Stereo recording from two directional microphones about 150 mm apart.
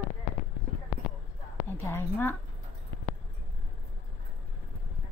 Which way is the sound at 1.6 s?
15° left (ahead or behind).